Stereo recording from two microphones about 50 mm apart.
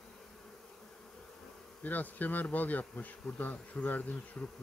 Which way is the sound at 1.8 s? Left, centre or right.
Left.